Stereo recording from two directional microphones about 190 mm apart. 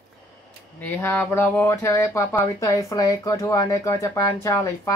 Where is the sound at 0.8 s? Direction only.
10° left (ahead or behind).